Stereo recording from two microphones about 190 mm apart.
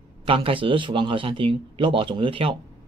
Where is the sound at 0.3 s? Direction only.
30° right (ahead or behind).